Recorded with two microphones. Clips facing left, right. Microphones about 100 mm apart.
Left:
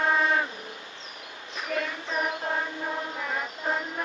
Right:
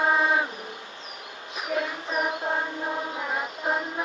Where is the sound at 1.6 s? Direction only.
10° right (ahead or behind).